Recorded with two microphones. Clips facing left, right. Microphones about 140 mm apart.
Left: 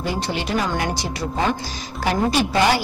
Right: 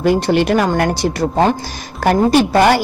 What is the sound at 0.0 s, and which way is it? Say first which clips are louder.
Music: right 11 dB; 60° right (ahead or behind).